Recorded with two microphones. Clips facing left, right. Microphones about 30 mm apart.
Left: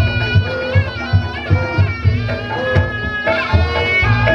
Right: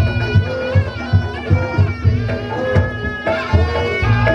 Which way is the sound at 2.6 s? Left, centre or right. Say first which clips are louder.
Left 1 dB; left.